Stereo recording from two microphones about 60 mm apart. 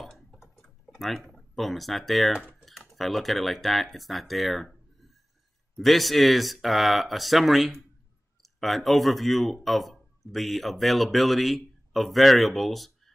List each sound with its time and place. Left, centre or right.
0.0 s typing: centre
1.3 s speech: centre
5.8 s speech: centre